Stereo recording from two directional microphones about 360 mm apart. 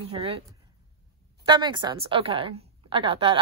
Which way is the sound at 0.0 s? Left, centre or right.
Centre.